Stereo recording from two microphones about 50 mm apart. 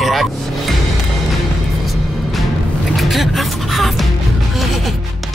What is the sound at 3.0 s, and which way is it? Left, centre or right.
Music, centre.